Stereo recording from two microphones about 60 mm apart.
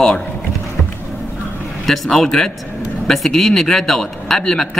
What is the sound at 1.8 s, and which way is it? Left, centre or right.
A man's voice, centre.